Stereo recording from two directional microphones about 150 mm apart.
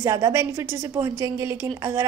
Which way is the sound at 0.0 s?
20° right (ahead or behind).